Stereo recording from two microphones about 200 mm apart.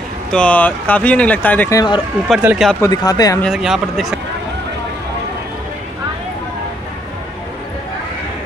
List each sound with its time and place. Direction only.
0.3 s speech: 5° left (ahead or behind)
2.2 s speech: 5° right (ahead or behind)
2.8 s speech: 20° left (ahead or behind)
3.4 s speech: centre (ahead or behind)